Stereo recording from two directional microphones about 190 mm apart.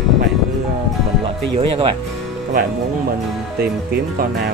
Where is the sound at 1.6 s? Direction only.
30° right (ahead or behind).